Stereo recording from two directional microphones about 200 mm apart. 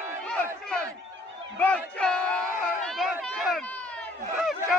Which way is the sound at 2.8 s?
Centre (ahead or behind).